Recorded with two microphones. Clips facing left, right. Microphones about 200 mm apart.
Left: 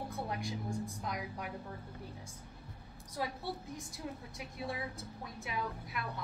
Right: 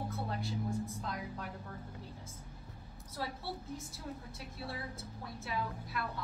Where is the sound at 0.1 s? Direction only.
15° left (ahead or behind).